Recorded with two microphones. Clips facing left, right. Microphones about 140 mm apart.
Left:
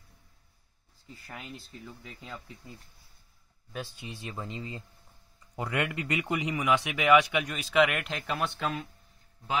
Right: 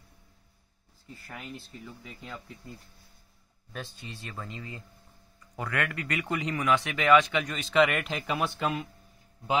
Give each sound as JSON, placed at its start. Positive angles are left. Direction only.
{"t": 1.2, "sound": "speech", "side_deg": 0}
{"t": 3.7, "sound": "speech", "side_deg": 10}